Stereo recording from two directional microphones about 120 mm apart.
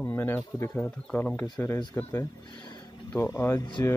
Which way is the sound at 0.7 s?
10° left (ahead or behind).